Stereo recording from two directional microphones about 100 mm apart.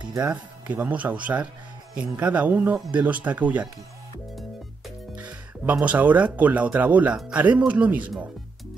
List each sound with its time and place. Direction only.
0.2 s speech: 15° right (ahead or behind)
5.1 s speech: 15° right (ahead or behind)